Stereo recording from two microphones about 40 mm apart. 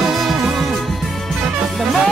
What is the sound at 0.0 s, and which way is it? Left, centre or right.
Music, centre.